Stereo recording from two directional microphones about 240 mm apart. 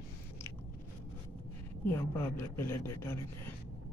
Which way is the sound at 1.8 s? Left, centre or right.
Centre.